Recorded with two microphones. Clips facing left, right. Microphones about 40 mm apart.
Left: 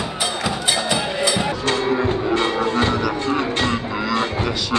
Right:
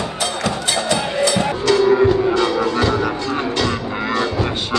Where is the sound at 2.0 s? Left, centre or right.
Left.